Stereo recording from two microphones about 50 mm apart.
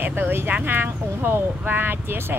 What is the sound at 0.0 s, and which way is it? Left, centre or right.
Speech, right.